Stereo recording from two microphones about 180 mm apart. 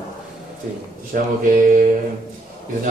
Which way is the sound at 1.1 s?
50° right (ahead or behind).